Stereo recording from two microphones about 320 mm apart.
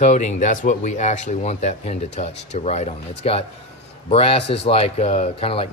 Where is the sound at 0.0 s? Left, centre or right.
Left.